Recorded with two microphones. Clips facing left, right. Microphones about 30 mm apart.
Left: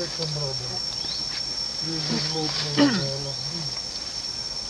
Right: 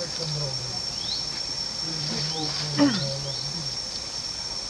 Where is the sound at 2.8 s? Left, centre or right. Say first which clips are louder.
Left 1 dB; left.